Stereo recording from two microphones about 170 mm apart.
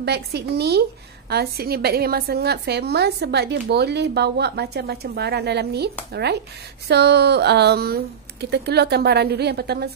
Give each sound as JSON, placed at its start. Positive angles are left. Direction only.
{"t": 0.0, "sound": "a woman's voice", "side_deg": -75}
{"t": 6.9, "sound": "a woman's voice", "side_deg": -75}